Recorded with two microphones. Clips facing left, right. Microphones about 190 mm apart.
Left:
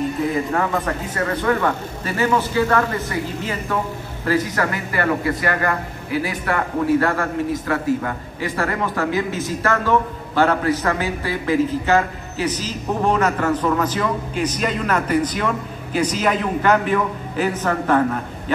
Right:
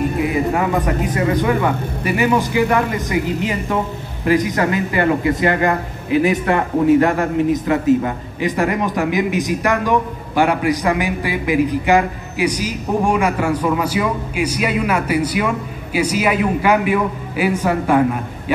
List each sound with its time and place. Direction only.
0.2 s speech: 15° right (ahead or behind)